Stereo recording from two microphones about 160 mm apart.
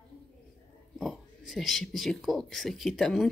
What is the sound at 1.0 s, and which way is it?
Speech, centre (ahead or behind).